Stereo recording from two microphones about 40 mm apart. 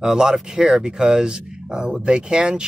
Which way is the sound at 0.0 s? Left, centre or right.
Centre.